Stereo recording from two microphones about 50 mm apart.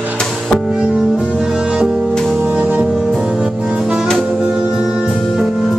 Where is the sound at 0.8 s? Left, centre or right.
Centre.